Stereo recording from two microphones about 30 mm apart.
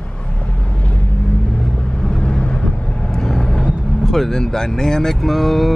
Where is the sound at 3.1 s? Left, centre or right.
Centre.